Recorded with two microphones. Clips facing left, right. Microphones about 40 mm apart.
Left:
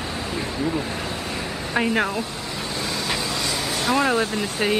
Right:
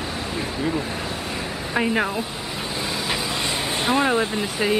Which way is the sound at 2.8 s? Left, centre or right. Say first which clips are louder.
Even; centre.